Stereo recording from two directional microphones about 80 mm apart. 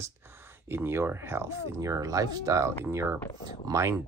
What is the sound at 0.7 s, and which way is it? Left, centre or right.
Speech, right.